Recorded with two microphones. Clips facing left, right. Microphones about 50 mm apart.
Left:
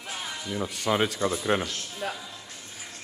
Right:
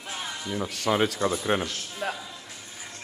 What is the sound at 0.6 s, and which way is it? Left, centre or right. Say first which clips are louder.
Speech: right 2 dB; left.